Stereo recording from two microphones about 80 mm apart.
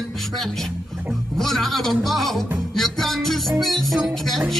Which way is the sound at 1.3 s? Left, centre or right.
Centre.